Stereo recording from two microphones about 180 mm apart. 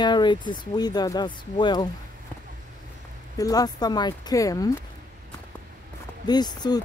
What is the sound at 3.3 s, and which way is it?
Speech, 20° left (ahead or behind).